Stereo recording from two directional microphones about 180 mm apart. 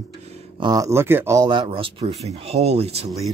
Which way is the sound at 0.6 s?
20° right (ahead or behind).